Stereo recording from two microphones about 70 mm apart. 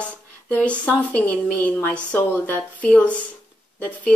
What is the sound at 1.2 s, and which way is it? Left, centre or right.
Speech, left.